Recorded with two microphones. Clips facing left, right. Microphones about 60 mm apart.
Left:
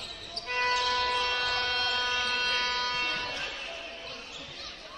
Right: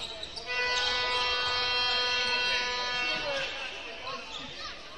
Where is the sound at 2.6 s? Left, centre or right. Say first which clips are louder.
Left 2 dB; centre.